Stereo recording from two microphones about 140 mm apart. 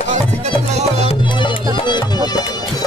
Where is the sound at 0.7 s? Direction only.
50° right (ahead or behind).